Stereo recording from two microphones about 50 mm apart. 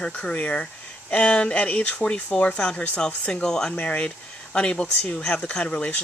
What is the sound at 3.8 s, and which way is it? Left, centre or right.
Speech, left.